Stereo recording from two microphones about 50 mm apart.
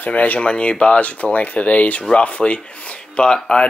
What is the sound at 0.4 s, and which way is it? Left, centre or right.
Speech, left.